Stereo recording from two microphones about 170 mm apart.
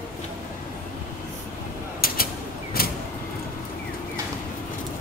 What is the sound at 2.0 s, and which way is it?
Creak, 60° left (ahead or behind).